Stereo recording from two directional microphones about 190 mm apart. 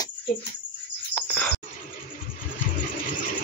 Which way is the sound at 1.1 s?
10° left (ahead or behind).